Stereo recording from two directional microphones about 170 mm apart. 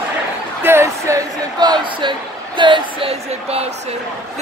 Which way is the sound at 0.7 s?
15° right (ahead or behind).